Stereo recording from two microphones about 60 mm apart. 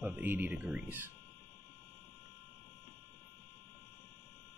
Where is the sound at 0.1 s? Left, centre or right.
Right.